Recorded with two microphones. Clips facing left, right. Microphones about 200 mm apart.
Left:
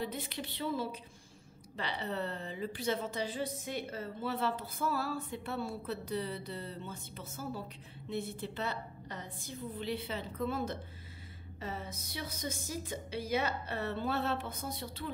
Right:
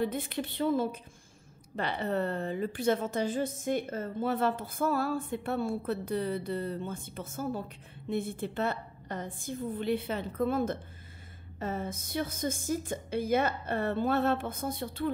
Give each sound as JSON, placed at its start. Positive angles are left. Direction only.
{"t": 0.0, "sound": "a woman's voice", "side_deg": -50}